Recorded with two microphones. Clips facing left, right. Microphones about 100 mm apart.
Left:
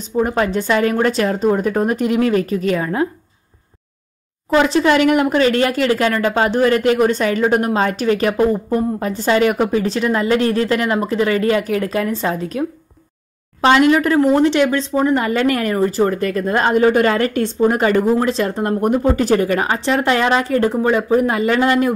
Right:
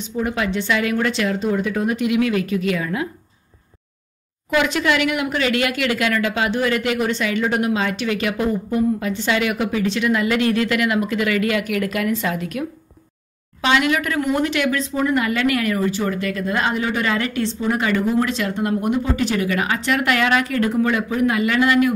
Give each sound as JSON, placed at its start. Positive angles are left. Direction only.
{"t": 0.2, "sound": "speech", "side_deg": 40}
{"t": 4.5, "sound": "speech", "side_deg": 35}